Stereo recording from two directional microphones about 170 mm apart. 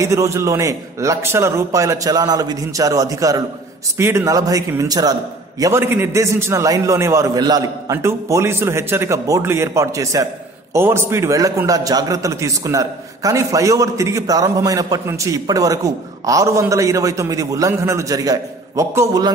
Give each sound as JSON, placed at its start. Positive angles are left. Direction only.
{"t": 0.0, "sound": "a man's voice", "side_deg": -15}